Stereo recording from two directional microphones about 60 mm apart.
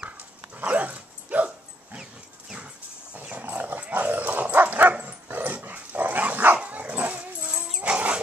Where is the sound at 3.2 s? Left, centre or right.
Right.